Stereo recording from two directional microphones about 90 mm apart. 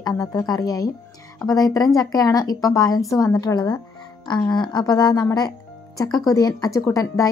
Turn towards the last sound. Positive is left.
turn(degrees=40)  # may be behind; listen again after turning